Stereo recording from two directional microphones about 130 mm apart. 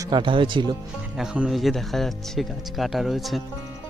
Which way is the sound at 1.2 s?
5° right (ahead or behind).